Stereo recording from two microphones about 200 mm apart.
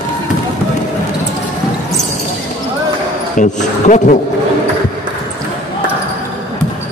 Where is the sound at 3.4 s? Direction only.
35° left (ahead or behind).